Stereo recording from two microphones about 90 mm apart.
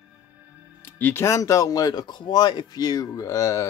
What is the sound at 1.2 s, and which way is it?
Speech, 35° left (ahead or behind).